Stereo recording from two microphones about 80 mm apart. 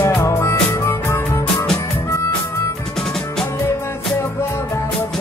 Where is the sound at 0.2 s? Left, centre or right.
Left.